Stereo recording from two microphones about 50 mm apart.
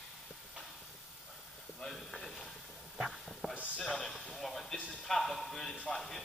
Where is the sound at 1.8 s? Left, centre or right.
Centre.